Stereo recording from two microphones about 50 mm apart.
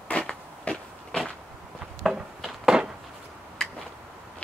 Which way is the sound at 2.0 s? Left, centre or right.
Centre.